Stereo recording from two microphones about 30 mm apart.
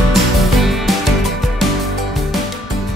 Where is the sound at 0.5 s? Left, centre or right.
Centre.